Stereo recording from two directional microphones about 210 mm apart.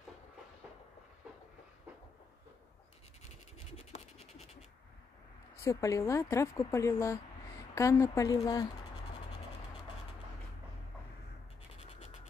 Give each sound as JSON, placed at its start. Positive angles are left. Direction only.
{"t": 3.7, "sound": "scratch", "side_deg": 30}
{"t": 5.6, "sound": "speech", "side_deg": 15}
{"t": 11.8, "sound": "scratch", "side_deg": 30}